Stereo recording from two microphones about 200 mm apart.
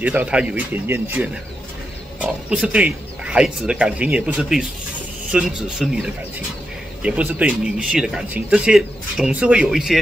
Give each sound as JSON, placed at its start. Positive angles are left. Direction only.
{"t": 0.0, "sound": "speech", "side_deg": -5}